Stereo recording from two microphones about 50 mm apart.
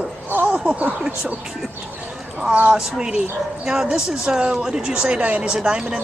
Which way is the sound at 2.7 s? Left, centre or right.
Centre.